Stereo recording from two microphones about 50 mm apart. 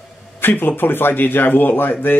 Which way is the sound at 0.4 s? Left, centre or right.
Left.